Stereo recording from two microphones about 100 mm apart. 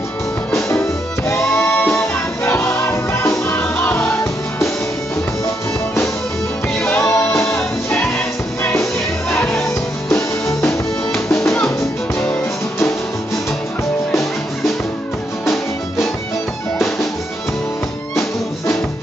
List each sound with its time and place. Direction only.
0.5 s music: 25° left (ahead or behind)
6.8 s music: 20° left (ahead or behind)
7.5 s music: 5° left (ahead or behind)
9.5 s music: 5° left (ahead or behind)
10.1 s music: 25° left (ahead or behind)